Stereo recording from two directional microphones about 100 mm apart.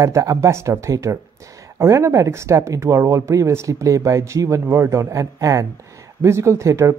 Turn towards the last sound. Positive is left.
turn(degrees=-30)  # may be behind; listen again after turning